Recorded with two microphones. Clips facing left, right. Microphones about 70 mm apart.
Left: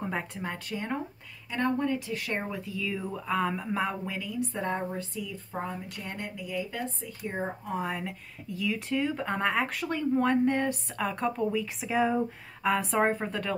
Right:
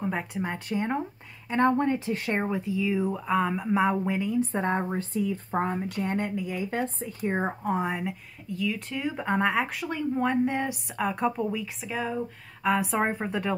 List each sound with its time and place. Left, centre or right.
0.0 s speech: centre
0.4 s speech: centre
1.5 s speech: right
2.4 s speech: right
6.0 s speech: right
6.8 s speech: right
7.7 s speech: centre
8.5 s speech: centre